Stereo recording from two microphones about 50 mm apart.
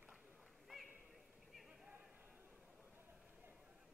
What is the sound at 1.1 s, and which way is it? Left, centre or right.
Horse, centre.